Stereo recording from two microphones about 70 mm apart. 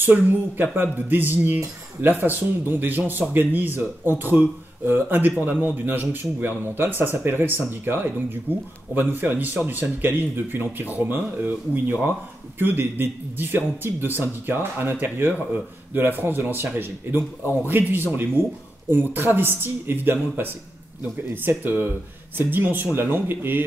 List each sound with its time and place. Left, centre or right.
0.0 s a man's voice: right